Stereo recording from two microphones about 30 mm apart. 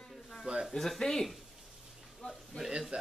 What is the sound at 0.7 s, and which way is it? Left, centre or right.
Speech, centre.